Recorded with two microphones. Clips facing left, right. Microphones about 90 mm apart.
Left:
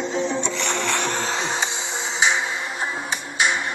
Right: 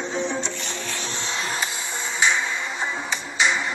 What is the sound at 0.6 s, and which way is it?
Music, 70° left (ahead or behind).